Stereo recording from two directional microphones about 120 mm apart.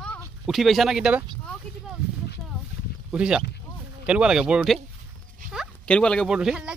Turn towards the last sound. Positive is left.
turn(degrees=-5)  # may be behind; listen again after turning